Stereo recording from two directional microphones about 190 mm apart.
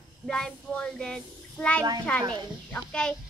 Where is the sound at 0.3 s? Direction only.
5° left (ahead or behind).